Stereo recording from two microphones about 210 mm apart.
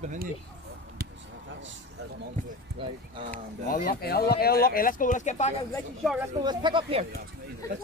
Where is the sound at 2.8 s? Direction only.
25° right (ahead or behind).